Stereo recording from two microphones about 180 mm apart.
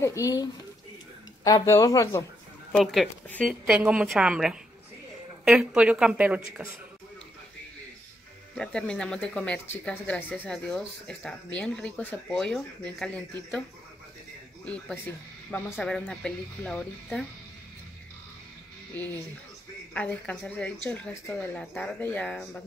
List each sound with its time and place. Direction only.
0.0 s speech: 15° left (ahead or behind)
2.7 s speech: centre (ahead or behind)
3.6 s speech: 5° right (ahead or behind)
8.5 s speech: 5° left (ahead or behind)
14.6 s speech: 5° left (ahead or behind)
19.9 s speech: 10° left (ahead or behind)